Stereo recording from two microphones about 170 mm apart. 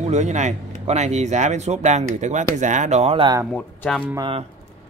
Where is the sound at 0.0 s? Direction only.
40° right (ahead or behind).